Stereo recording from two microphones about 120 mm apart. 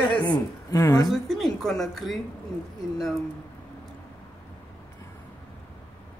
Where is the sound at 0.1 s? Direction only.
15° left (ahead or behind).